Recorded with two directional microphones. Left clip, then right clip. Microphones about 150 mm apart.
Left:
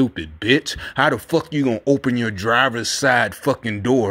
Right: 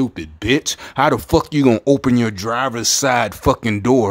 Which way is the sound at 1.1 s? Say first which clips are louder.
Right 4 dB; 30° right (ahead or behind).